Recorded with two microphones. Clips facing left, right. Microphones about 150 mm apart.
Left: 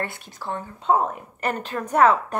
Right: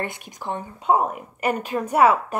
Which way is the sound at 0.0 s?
15° right (ahead or behind).